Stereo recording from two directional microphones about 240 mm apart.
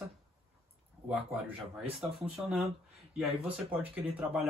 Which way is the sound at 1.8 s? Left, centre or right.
Centre.